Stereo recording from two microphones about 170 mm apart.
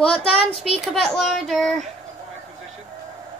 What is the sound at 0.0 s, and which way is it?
Speech, 35° left (ahead or behind).